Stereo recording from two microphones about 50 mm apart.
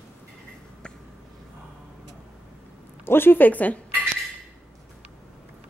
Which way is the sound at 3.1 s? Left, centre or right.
Left.